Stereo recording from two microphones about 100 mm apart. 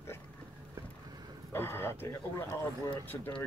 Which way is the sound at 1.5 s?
25° left (ahead or behind).